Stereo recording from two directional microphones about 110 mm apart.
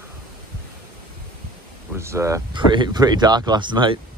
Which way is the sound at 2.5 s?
45° right (ahead or behind).